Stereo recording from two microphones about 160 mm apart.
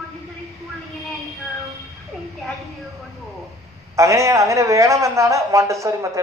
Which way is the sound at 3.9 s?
20° right (ahead or behind).